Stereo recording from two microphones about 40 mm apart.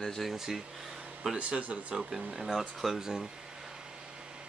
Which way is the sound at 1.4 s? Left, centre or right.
Right.